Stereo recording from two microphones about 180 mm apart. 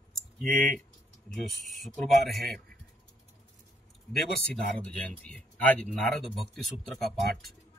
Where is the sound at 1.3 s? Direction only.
Centre (ahead or behind).